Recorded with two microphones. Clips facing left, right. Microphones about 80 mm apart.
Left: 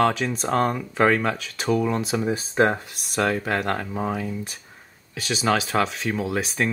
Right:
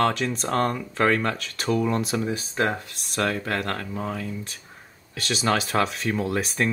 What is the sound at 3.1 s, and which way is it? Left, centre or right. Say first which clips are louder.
Speech: left 3 dB; centre.